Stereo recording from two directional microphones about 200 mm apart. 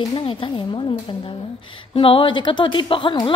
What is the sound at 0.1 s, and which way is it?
A woman's voice, 25° left (ahead or behind).